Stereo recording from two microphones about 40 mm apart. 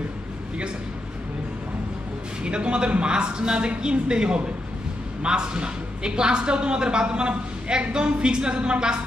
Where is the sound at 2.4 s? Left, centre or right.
Right.